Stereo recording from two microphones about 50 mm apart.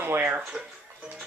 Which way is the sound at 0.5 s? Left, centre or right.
Centre.